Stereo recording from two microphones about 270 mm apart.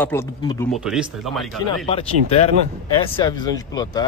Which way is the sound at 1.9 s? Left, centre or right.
Left.